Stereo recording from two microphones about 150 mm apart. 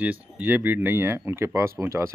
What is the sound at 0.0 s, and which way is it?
Speech, 10° right (ahead or behind).